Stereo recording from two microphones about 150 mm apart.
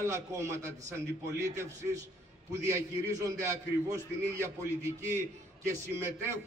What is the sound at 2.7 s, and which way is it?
A man's voice, 20° right (ahead or behind).